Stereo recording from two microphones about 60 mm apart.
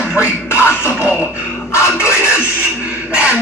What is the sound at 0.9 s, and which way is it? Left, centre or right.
Beatboxing, centre.